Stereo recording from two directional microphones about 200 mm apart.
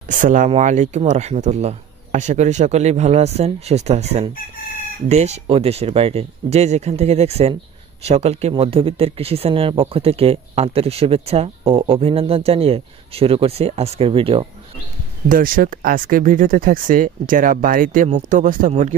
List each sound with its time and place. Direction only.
0.1 s speech: 40° right (ahead or behind)
15.2 s speech: 45° right (ahead or behind)